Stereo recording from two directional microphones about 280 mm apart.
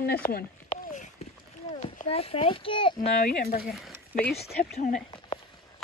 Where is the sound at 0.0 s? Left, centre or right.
Left; by 3.1 s centre.